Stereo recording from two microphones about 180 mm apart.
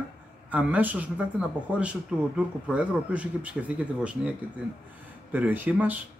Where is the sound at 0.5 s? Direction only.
10° right (ahead or behind).